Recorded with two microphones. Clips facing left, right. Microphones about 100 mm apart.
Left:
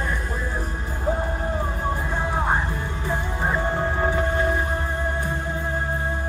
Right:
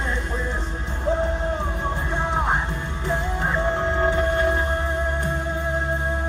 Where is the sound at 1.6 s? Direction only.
10° left (ahead or behind).